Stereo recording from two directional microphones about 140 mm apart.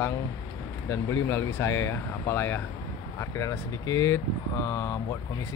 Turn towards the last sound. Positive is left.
turn(degrees=25)  # may be behind; listen again after turning